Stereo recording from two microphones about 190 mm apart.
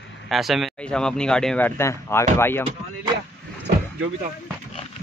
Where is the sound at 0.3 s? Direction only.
Centre (ahead or behind).